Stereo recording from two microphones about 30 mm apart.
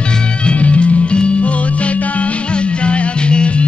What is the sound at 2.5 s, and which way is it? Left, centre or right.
Music, left.